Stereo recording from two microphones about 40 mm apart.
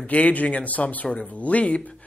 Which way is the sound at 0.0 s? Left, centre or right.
Left.